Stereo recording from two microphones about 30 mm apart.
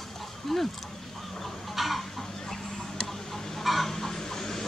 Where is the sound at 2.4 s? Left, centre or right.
Centre.